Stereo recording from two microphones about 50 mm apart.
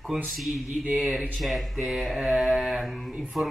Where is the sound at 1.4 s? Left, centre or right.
Centre.